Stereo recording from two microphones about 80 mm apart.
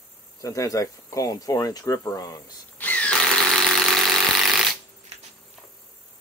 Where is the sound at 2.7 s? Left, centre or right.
Centre.